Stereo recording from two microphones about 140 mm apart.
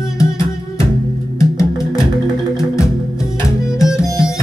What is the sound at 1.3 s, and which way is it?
Music, 20° left (ahead or behind).